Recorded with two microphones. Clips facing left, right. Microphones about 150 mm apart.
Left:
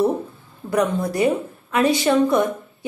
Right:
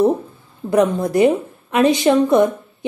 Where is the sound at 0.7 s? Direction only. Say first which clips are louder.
Right 4 dB; 20° right (ahead or behind).